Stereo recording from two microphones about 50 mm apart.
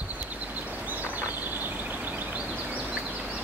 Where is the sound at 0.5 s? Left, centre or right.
Right.